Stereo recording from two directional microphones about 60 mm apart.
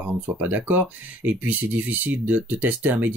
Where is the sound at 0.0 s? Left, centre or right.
Right.